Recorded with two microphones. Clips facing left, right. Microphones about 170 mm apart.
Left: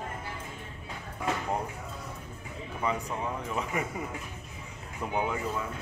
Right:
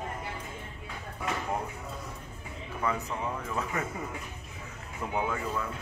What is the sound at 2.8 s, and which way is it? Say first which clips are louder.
Speech: even; 15° left (ahead or behind).